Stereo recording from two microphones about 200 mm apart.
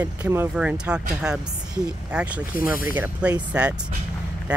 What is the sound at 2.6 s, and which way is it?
Speech, 45° left (ahead or behind).